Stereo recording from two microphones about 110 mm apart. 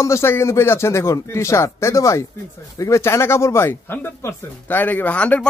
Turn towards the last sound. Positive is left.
turn(degrees=10)  # may be behind; listen again after turning